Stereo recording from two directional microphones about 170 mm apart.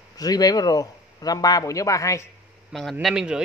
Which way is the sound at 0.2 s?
20° left (ahead or behind).